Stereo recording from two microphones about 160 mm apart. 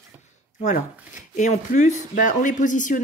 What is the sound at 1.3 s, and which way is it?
Speech, 50° left (ahead or behind).